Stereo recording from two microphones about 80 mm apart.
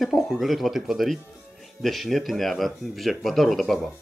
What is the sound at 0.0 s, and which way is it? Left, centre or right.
A man's voice, centre.